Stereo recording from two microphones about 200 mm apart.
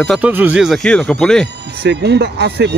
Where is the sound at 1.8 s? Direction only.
55° right (ahead or behind).